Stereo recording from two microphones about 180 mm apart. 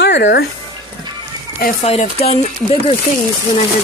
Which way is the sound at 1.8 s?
35° left (ahead or behind).